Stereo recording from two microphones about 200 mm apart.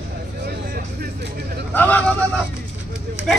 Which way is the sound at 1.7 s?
10° left (ahead or behind).